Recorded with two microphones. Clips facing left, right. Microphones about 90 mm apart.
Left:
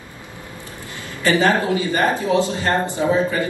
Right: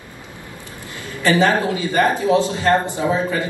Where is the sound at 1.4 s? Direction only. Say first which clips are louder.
Even; 25° right (ahead or behind).